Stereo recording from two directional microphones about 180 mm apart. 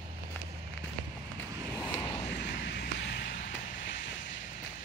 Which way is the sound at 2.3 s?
65° left (ahead or behind).